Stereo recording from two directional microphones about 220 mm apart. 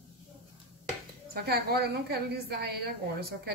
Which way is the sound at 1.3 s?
45° right (ahead or behind).